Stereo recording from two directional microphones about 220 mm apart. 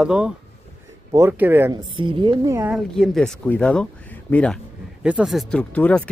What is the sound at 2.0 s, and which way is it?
Speech, 20° right (ahead or behind).